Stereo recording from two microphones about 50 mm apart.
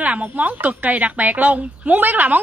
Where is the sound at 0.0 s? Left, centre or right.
Right.